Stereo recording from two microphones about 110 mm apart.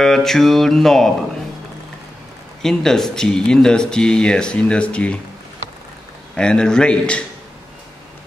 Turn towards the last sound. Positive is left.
turn(degrees=10)  # may be behind; listen again after turning